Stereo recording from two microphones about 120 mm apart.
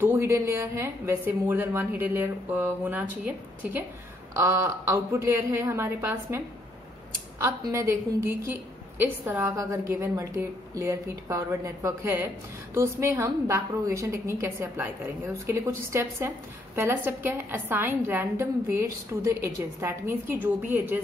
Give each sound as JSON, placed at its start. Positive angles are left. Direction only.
{"t": 0.0, "sound": "a woman's voice", "side_deg": -20}
{"t": 4.3, "sound": "a woman's voice", "side_deg": -25}
{"t": 7.6, "sound": "a woman's voice", "side_deg": -25}